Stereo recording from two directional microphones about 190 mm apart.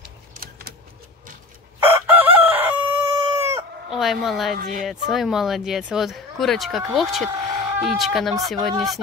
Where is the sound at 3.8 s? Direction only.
Centre (ahead or behind).